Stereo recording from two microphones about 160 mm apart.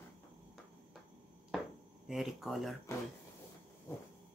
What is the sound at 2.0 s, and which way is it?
Speech, centre (ahead or behind).